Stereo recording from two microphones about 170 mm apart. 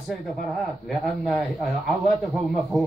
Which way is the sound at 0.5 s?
Centre (ahead or behind).